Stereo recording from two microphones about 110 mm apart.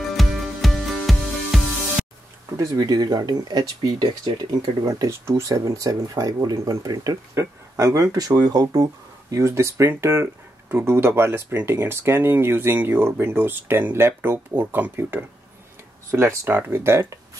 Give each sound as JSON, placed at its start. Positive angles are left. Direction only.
{"t": 0.1, "sound": "music", "side_deg": 0}
{"t": 2.8, "sound": "speech", "side_deg": -40}